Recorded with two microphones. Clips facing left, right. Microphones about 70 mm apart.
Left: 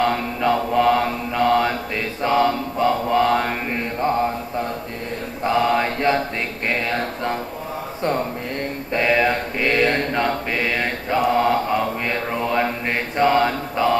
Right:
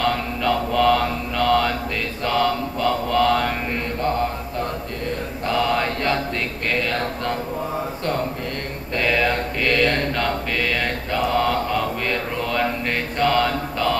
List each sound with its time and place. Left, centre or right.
0.0 s mantra: left
5.4 s mantra: left
6.7 s a sound: left
8.9 s mantra: centre